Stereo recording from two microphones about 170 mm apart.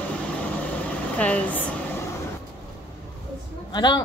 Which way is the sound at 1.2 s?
10° left (ahead or behind).